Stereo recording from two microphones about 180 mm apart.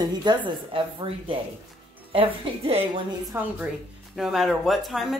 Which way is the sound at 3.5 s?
5° right (ahead or behind).